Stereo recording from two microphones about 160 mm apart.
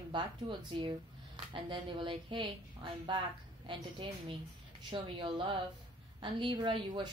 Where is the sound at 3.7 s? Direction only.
35° right (ahead or behind).